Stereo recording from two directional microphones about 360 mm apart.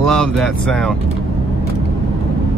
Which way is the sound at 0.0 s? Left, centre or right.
Centre.